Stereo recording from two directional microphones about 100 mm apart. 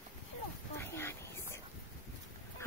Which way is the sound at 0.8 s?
25° left (ahead or behind).